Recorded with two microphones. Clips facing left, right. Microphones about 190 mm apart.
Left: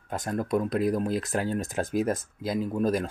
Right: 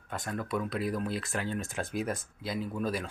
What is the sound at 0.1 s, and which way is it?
Speech, 40° left (ahead or behind).